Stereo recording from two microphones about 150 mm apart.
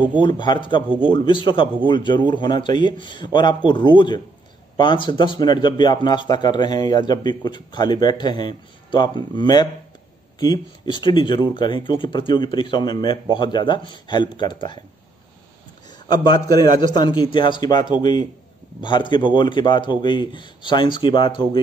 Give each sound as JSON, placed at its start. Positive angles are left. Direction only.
{"t": 0.2, "sound": "a man's voice", "side_deg": 30}
{"t": 16.1, "sound": "a man's voice", "side_deg": 25}